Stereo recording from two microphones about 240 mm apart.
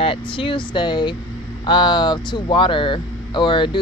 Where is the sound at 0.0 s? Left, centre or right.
Left.